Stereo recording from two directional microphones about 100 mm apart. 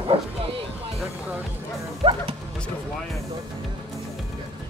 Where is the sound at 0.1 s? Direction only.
75° right (ahead or behind).